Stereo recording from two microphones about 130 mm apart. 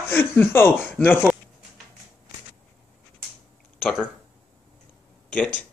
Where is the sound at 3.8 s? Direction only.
10° left (ahead or behind).